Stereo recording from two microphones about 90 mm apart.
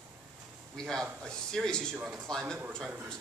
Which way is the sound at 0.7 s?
5° left (ahead or behind).